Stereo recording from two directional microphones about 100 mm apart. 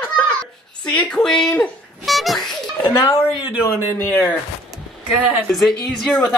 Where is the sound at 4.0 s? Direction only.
20° left (ahead or behind).